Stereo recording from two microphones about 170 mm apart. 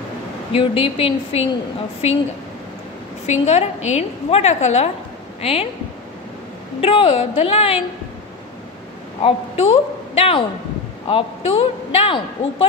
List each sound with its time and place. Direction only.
0.5 s a woman's voice: 30° left (ahead or behind)
3.3 s a woman's voice: 40° left (ahead or behind)
6.8 s a woman's voice: 35° left (ahead or behind)
9.2 s a woman's voice: 35° left (ahead or behind)